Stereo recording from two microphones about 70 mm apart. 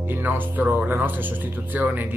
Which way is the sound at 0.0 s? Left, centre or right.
Right.